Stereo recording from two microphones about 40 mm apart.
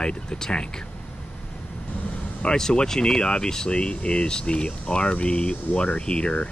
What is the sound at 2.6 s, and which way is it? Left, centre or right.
Speech, centre.